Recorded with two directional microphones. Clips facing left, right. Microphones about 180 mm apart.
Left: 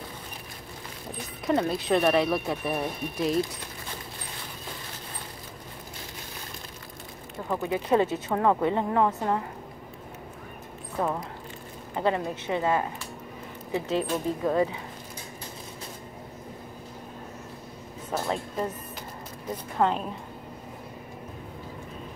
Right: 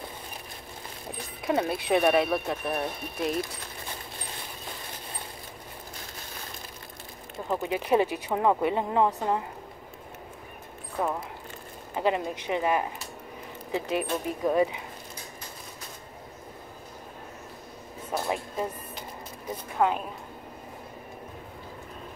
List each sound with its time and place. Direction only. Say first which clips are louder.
1.4 s speech: left 2 dB; 5° right (ahead or behind)
7.4 s speech: left 1 dB; 20° right (ahead or behind)
11.0 s speech: left 1 dB; 5° right (ahead or behind)
11.9 s speech: even; 15° right (ahead or behind)
18.1 s a sound: left 1 dB; 10° right (ahead or behind)
19.8 s speech: even; centre (ahead or behind)